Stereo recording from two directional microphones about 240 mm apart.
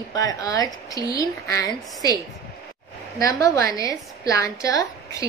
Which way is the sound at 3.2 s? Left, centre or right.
Centre.